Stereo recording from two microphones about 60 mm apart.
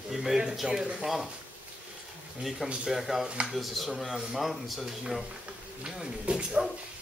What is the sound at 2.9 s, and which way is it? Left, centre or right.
Speech, centre.